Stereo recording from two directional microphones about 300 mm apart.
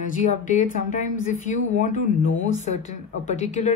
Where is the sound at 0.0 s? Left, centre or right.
Left.